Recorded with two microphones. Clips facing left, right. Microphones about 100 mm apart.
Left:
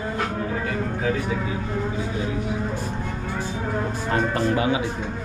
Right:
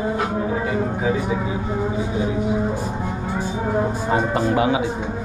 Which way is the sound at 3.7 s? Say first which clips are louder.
Right 6 dB; 15° right (ahead or behind).